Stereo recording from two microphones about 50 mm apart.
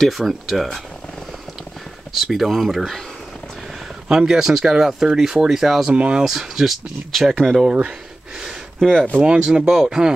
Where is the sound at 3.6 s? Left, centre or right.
Centre.